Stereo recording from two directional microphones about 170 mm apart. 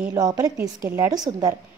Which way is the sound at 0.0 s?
20° right (ahead or behind).